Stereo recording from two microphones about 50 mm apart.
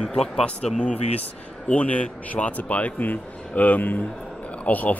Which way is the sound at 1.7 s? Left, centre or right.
Left.